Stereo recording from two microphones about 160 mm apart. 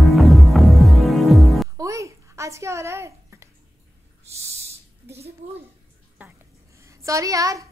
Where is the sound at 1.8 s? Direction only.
20° right (ahead or behind).